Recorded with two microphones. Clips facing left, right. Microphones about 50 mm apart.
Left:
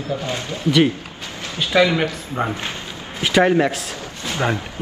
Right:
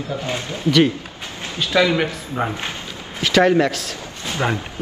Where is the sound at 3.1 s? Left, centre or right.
Centre.